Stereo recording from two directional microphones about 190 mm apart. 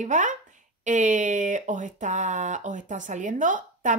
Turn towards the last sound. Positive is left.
turn(degrees=-40)  # may be behind; listen again after turning